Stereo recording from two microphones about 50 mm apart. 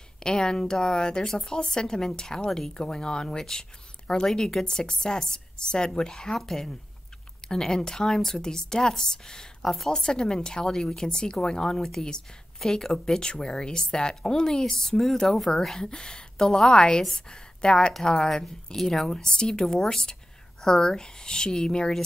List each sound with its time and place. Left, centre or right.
0.2 s a woman's voice: centre
17.9 s a woman's voice: centre